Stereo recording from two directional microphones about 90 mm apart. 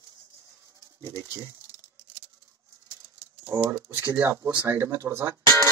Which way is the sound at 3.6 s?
25° right (ahead or behind).